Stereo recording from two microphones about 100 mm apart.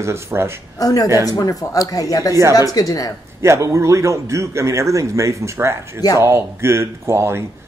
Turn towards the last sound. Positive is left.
turn(degrees=-25)  # may be behind; listen again after turning